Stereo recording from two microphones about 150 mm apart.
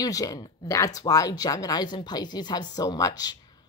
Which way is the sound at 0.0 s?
25° left (ahead or behind).